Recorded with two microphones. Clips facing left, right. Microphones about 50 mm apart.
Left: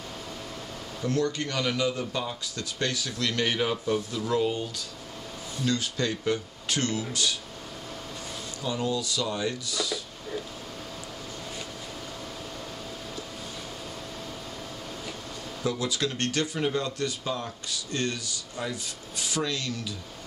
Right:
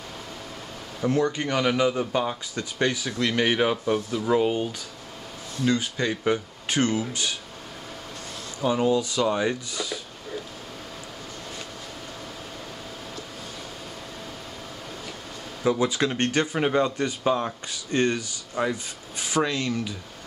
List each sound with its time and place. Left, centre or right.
1.0 s speech: centre
5.7 s speech: centre
8.5 s speech: right
15.6 s speech: right